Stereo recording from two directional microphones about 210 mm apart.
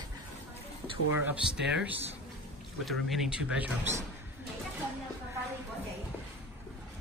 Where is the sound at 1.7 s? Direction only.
5° right (ahead or behind).